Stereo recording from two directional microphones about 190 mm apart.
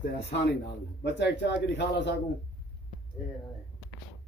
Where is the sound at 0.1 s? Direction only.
30° left (ahead or behind).